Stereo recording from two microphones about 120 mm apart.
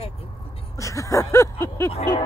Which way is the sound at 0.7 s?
25° left (ahead or behind).